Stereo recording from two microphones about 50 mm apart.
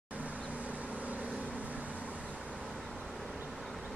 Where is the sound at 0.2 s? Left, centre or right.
Right.